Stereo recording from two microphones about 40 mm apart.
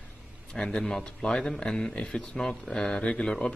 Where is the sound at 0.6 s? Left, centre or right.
Left.